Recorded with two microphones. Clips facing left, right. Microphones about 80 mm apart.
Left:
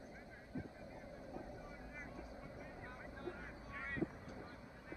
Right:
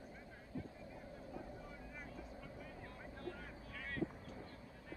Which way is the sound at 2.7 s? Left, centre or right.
Left.